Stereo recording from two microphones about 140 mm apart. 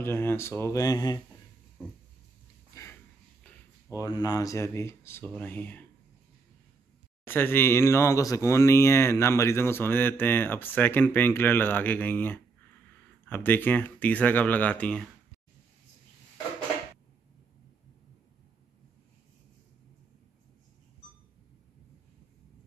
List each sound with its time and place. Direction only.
0.0 s speech: 15° left (ahead or behind)
2.7 s a sound: 20° left (ahead or behind)
3.9 s speech: 25° left (ahead or behind)
7.2 s speech: 15° left (ahead or behind)